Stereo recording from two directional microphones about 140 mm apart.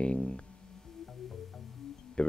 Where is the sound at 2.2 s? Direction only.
5° left (ahead or behind).